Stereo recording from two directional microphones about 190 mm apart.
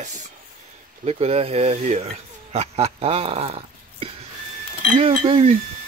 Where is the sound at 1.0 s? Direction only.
35° right (ahead or behind).